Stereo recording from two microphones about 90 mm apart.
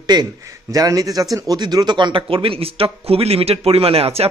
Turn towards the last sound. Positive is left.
turn(degrees=-90)